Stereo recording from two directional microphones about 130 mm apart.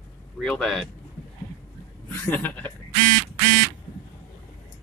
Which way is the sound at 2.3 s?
15° left (ahead or behind).